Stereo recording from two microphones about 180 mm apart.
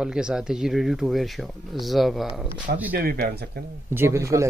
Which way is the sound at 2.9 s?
55° right (ahead or behind).